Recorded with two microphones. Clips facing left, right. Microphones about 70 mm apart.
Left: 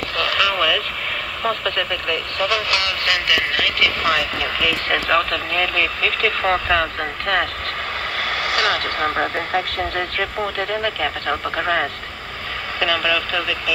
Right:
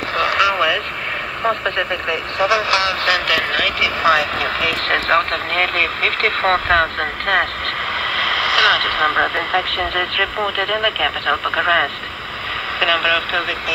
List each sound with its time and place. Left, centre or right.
0.2 s vehicle: centre
1.8 s speech: centre
3.3 s speech: right
3.8 s speech: right
4.2 s speech: right
8.2 s vehicle: right
9.1 s speech: right